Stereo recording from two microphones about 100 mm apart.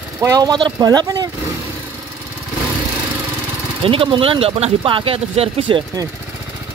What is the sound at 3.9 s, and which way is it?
Speech, 65° right (ahead or behind).